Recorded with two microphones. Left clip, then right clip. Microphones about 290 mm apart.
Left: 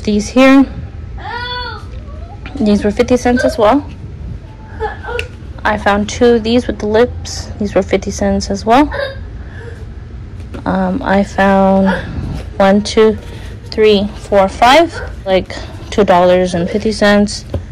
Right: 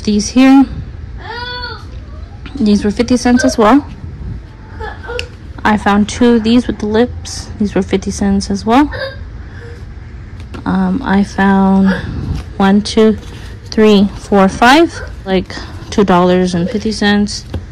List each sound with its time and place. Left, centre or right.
0.0 s a woman's voice: centre
2.4 s a woman's voice: centre
5.6 s a woman's voice: centre
10.6 s a woman's voice: centre